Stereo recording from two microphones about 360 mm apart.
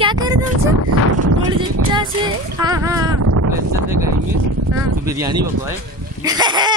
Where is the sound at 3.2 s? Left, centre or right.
Right.